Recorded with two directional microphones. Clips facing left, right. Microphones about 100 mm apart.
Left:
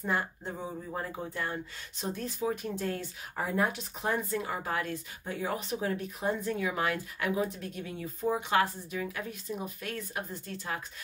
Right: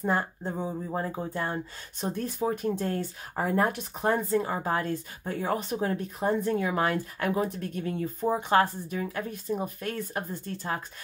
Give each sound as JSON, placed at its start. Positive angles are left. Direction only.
{"t": 0.0, "sound": "speech", "side_deg": -35}
{"t": 1.5, "sound": "speech", "side_deg": -45}
{"t": 5.3, "sound": "speech", "side_deg": -45}